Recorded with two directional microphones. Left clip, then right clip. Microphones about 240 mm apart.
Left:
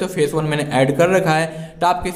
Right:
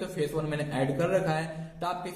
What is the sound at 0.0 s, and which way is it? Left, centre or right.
A man's voice, left.